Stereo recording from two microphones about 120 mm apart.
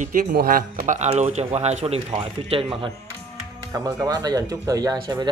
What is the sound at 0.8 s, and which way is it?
A man's voice, 75° right (ahead or behind).